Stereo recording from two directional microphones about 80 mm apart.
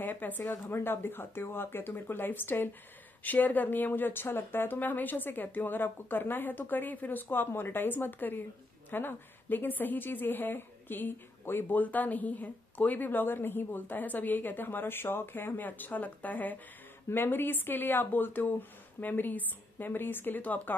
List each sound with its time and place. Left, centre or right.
0.0 s a woman's voice: left